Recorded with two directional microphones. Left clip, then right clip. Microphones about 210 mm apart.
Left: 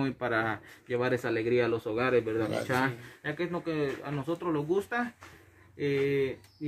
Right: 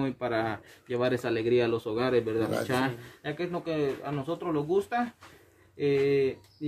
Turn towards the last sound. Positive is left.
turn(degrees=-20)  # may be behind; listen again after turning